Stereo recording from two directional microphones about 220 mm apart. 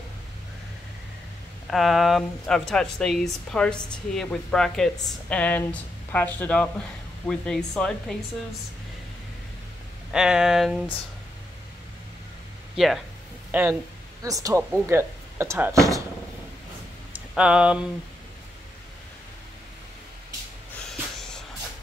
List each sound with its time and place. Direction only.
1.7 s speech: centre (ahead or behind)
10.1 s speech: 5° right (ahead or behind)
12.7 s speech: centre (ahead or behind)
17.1 s speech: 5° right (ahead or behind)